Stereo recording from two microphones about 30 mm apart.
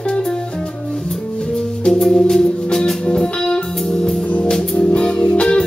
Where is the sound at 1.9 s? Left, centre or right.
Centre; by 4.1 s left.